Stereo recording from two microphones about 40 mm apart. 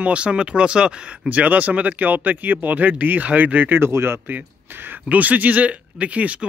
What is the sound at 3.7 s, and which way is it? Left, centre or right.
Speech, right.